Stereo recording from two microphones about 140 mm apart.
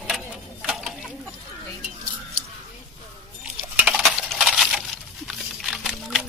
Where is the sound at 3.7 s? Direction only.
10° right (ahead or behind).